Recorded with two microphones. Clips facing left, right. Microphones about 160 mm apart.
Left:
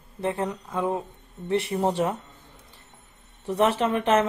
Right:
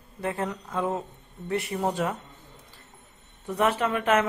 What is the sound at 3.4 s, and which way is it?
Speech, 30° left (ahead or behind).